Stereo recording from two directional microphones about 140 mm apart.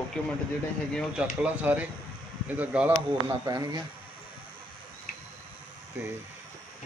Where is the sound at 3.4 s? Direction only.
30° right (ahead or behind).